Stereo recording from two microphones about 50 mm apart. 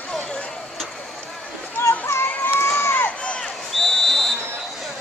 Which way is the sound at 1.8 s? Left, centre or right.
Left.